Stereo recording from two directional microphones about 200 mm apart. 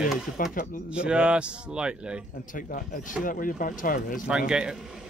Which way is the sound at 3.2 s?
45° left (ahead or behind).